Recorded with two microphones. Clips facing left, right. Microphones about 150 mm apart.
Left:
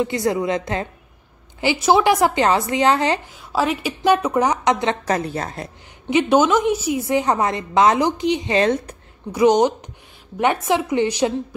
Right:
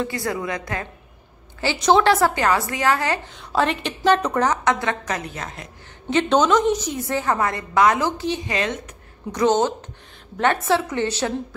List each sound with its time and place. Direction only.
0.0 s a woman's voice: 20° left (ahead or behind)
1.6 s a woman's voice: 10° left (ahead or behind)
3.3 s a woman's voice: 5° left (ahead or behind); by 4.9 s 20° left (ahead or behind)
5.0 s a woman's voice: 35° left (ahead or behind)
6.0 s a woman's voice: 10° left (ahead or behind)
8.5 s a woman's voice: 35° left (ahead or behind)
9.3 s a woman's voice: 15° left (ahead or behind)